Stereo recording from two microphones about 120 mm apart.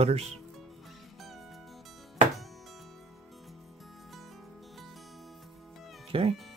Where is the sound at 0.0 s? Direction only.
60° right (ahead or behind).